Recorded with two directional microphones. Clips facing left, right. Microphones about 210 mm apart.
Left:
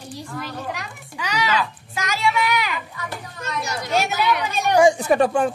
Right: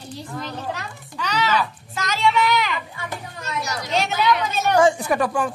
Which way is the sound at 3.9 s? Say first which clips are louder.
Even; 10° left (ahead or behind).